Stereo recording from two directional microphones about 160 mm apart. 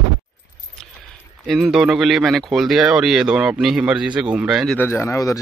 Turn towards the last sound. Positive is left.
turn(degrees=20)  # may be behind; listen again after turning